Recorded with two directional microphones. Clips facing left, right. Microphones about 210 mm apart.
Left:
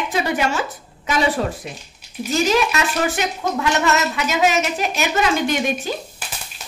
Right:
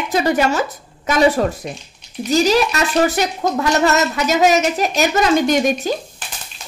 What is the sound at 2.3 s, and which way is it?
Speech, 35° right (ahead or behind).